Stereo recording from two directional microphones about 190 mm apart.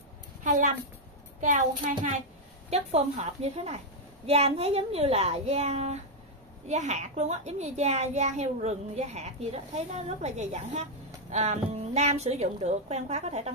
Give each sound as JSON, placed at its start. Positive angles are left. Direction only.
{"t": 0.4, "sound": "a woman's voice", "side_deg": -40}